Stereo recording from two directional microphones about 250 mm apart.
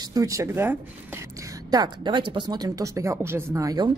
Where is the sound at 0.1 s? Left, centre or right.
Centre.